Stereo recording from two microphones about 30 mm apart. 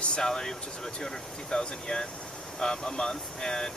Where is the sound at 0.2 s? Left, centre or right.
Centre.